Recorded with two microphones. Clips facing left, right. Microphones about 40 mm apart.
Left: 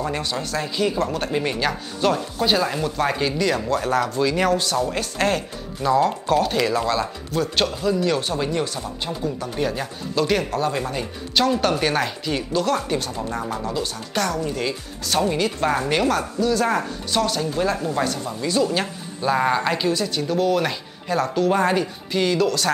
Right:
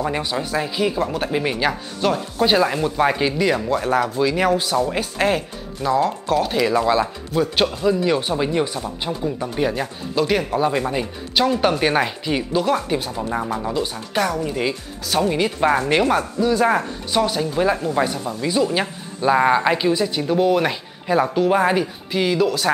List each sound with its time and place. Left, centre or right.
0.0 s speech: centre
15.0 s speech: centre
15.3 s speech: centre